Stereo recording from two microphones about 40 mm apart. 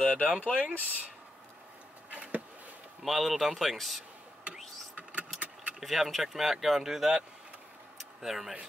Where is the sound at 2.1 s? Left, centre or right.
Right.